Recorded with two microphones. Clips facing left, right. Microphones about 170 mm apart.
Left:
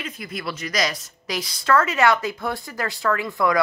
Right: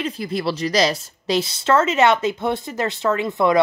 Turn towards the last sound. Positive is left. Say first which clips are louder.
# right 3 dB
turn(degrees=-20)  # may be behind; listen again after turning